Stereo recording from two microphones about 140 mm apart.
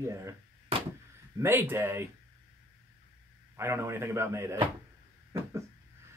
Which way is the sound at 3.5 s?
15° right (ahead or behind).